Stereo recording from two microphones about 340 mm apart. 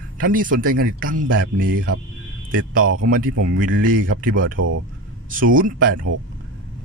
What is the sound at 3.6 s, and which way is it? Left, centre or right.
Speech, right.